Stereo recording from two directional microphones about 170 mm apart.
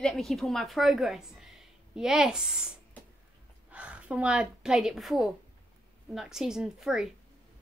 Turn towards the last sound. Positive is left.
turn(degrees=-5)  # may be behind; listen again after turning